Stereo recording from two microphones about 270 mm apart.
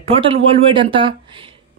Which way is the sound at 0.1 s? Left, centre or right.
Right.